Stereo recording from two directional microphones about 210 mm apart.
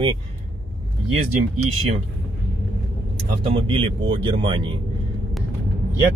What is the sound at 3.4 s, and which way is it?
Speech, 25° right (ahead or behind).